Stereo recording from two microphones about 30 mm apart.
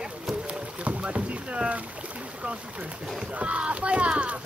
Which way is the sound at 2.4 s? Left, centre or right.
Right.